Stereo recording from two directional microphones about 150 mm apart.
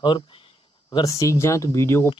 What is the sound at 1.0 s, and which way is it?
Speech, 20° left (ahead or behind).